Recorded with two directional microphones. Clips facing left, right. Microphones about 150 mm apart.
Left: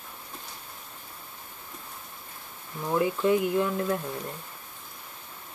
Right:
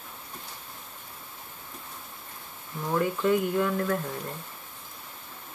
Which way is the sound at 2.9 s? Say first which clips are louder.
Left 1 dB; 15° left (ahead or behind).